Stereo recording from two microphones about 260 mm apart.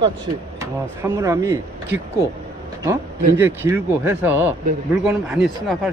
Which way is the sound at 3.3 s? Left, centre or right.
Centre.